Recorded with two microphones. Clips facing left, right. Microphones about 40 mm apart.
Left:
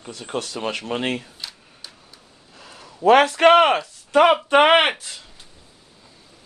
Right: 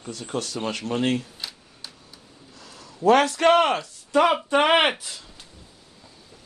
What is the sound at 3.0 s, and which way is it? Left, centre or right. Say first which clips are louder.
Speech: left 4 dB; left.